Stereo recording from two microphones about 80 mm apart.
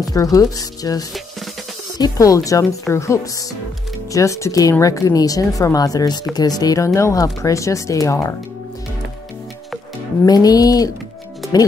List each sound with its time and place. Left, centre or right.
0.1 s a woman's voice: left
10.2 s a woman's voice: left